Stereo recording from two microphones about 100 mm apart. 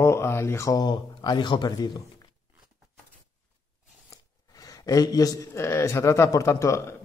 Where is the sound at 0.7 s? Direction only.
45° left (ahead or behind).